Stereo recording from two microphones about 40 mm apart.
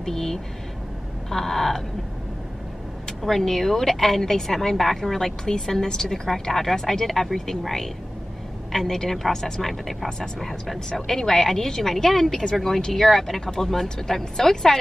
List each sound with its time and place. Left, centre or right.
0.0 s a woman's voice: centre
3.2 s a woman's voice: centre
10.0 s a woman's voice: centre